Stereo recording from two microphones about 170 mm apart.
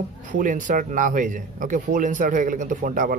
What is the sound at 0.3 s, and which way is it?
A man's voice, 50° right (ahead or behind).